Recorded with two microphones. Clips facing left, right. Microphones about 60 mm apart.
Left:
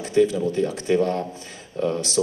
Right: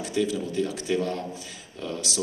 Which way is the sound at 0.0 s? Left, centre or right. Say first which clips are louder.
Left 7 dB; left.